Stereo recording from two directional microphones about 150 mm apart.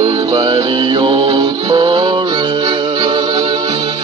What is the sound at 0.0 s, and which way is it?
Music, 30° right (ahead or behind).